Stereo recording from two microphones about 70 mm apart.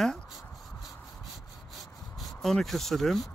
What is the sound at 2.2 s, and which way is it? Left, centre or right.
Speech, centre.